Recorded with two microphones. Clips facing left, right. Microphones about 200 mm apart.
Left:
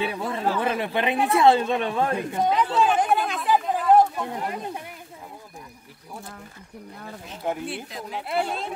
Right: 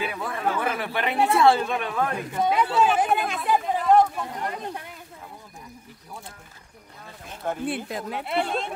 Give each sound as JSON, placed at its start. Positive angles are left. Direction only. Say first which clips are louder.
{"t": 0.0, "sound": "speech", "louder": "left 2 dB", "side_deg": 25}
{"t": 2.4, "sound": "a sound", "louder": "right 1 dB", "side_deg": -5}
{"t": 7.6, "sound": "speech", "louder": "right 4 dB", "side_deg": -55}
{"t": 8.3, "sound": "speech", "louder": "even", "side_deg": 0}